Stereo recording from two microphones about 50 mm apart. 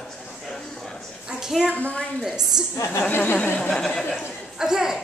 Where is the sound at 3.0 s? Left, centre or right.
Left.